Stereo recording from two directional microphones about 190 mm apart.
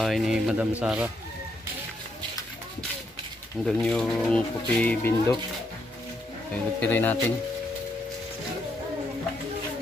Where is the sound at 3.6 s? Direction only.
5° left (ahead or behind).